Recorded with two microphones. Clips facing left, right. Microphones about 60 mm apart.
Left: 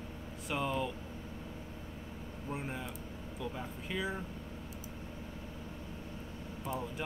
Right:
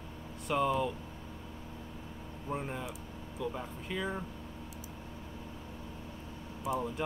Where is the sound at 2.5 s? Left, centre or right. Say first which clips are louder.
Right 3 dB; centre.